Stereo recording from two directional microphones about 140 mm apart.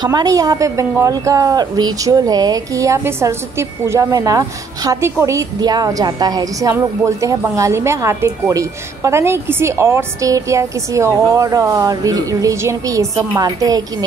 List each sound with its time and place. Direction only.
0.0 s a woman's voice: 30° right (ahead or behind)